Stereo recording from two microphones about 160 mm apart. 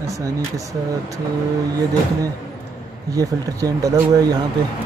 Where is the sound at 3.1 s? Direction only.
20° right (ahead or behind).